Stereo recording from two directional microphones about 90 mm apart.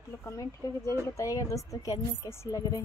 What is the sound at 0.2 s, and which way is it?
A woman's voice, 35° left (ahead or behind).